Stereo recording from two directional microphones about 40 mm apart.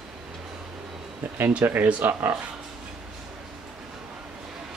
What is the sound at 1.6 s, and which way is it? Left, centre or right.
Speech, right.